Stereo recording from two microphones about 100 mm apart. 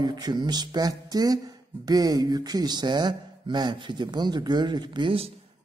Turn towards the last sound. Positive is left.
turn(degrees=-50)  # may be behind; listen again after turning